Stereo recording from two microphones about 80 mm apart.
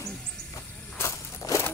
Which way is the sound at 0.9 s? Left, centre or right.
Left.